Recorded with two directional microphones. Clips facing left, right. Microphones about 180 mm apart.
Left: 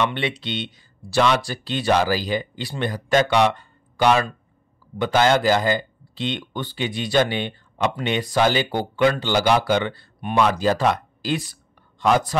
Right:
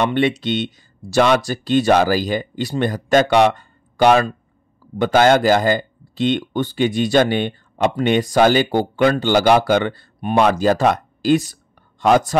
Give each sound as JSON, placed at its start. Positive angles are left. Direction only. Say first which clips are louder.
{"t": 0.0, "sound": "speech", "louder": "right 6 dB", "side_deg": -45}